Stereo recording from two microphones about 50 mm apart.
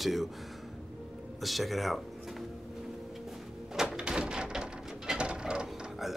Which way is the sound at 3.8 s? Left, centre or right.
Centre.